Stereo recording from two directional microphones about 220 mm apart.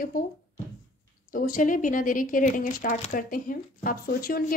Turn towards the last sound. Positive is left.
turn(degrees=40)  # may be behind; listen again after turning